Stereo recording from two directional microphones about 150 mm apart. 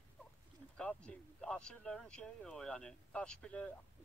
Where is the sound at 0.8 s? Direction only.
5° left (ahead or behind).